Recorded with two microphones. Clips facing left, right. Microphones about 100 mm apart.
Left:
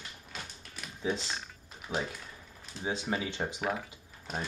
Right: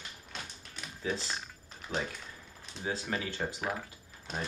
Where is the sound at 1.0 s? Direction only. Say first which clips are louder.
Left 2 dB; 20° left (ahead or behind).